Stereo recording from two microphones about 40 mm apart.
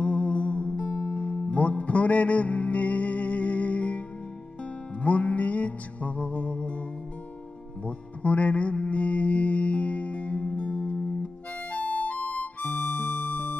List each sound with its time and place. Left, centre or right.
0.0 s music: left
5.0 s music: left
7.8 s mantra: left
11.7 s music: left